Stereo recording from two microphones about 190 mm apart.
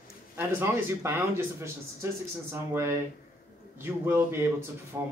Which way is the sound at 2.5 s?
10° right (ahead or behind).